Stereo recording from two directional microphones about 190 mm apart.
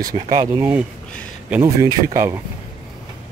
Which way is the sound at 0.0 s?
20° right (ahead or behind).